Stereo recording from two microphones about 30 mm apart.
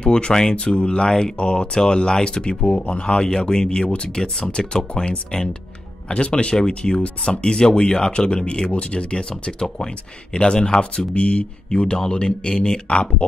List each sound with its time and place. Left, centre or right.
0.0 s speech: left
3.1 s speech: left
3.8 s speech: left
4.1 s speech: left
6.2 s speech: left
10.3 s speech: left
11.7 s speech: left